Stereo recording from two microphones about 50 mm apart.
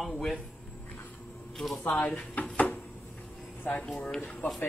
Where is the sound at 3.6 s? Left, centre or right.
Left.